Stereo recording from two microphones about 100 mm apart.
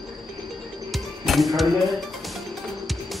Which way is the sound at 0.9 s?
Centre (ahead or behind).